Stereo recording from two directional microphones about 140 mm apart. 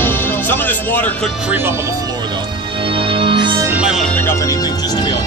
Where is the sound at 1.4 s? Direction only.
10° right (ahead or behind); by 3.6 s 35° right (ahead or behind).